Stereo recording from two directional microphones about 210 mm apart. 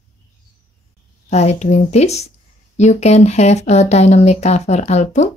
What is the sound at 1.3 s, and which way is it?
Speech, 30° left (ahead or behind).